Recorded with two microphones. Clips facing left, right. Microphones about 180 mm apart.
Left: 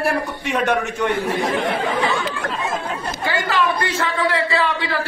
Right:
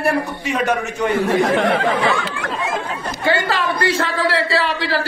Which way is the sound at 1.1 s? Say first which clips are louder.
Right 7 dB; 70° right (ahead or behind).